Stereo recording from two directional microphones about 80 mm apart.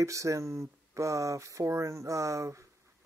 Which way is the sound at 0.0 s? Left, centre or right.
Right.